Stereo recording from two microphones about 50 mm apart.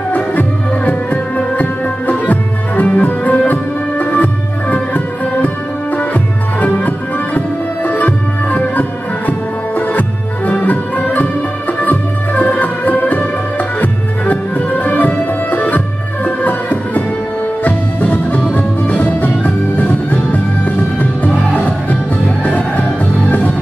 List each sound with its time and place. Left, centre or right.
0.1 s music: left